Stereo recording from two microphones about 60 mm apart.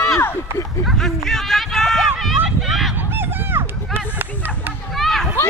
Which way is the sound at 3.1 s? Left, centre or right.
Right.